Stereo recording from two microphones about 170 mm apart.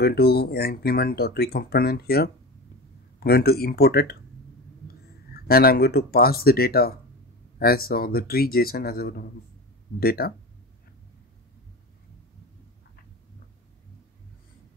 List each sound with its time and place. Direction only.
0.0 s speech: 70° left (ahead or behind)
5.3 s speech: 65° left (ahead or behind)